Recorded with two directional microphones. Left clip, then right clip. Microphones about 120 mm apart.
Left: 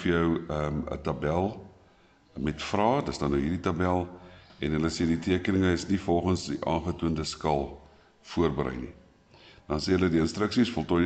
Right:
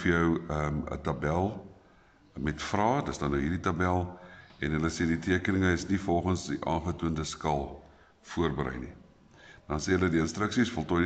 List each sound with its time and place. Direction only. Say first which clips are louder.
0.0 s speech: left 1 dB; 5° left (ahead or behind)